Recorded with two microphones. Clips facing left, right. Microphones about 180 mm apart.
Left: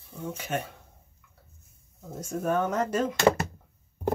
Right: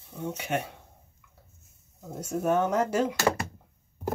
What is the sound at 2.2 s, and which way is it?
Speech, 15° right (ahead or behind).